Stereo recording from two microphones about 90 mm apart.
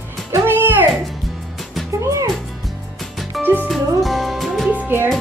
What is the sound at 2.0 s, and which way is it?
Music, 35° right (ahead or behind).